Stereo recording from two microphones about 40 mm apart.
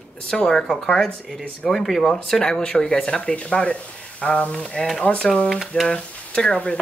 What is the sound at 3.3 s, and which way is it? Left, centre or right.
Speech, left.